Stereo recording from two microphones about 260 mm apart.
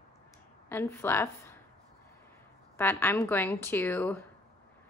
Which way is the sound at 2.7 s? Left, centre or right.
Centre.